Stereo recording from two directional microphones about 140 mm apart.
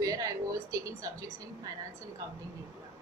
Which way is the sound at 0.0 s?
25° right (ahead or behind).